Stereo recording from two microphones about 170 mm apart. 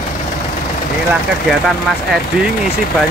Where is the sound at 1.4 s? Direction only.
Centre (ahead or behind).